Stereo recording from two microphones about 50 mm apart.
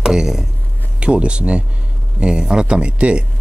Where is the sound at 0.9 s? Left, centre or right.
Right.